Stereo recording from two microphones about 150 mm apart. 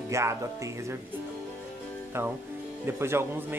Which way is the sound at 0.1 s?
20° right (ahead or behind).